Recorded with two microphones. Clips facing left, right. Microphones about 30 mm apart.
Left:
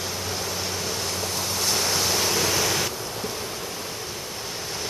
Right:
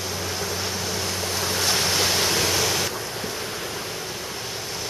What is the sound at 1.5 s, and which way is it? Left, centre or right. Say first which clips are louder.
Waves: right 2 dB; right.